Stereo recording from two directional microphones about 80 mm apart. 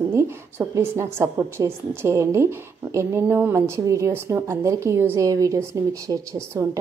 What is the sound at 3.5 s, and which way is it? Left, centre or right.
A woman's voice, right.